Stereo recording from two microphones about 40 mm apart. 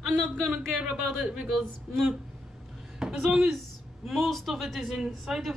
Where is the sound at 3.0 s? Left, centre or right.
Centre.